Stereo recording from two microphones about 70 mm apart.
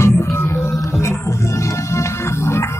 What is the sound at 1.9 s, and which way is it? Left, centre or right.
Music, left.